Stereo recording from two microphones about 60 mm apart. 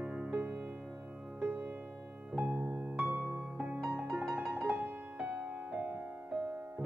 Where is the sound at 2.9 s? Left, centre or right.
Right.